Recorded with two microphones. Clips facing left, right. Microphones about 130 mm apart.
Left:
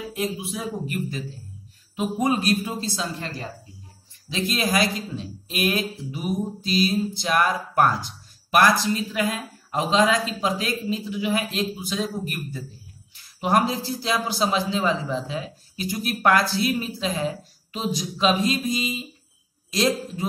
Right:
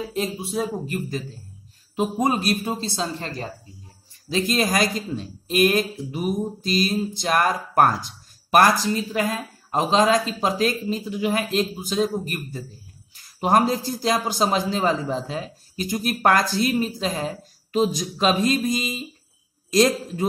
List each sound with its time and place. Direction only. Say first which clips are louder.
0.0 s speech: right 1 dB; 30° right (ahead or behind)
2.0 s speech: right 1 dB; 35° right (ahead or behind)
4.3 s a man's voice: right 3 dB; 40° right (ahead or behind)